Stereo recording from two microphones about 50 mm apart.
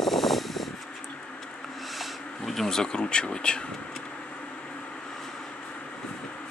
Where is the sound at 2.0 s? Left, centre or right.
Centre.